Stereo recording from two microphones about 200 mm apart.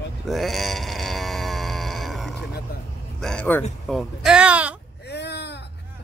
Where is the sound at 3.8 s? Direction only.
Centre (ahead or behind).